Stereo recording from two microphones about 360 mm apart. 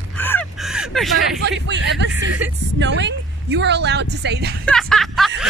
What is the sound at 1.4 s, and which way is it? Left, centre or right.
Speech, right.